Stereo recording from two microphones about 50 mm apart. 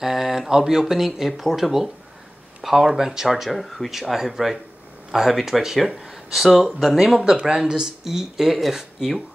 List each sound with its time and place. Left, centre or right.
0.0 s speech: centre
7.4 s speech: centre